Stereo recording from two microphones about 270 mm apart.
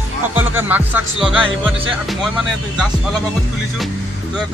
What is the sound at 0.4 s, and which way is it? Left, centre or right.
Speech, centre.